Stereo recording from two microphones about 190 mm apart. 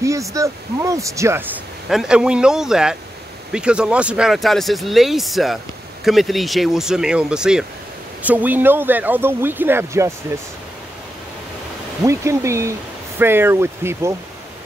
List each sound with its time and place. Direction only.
0.0 s speech: 15° right (ahead or behind)
1.9 s speech: 5° right (ahead or behind)
12.0 s speech: 15° right (ahead or behind)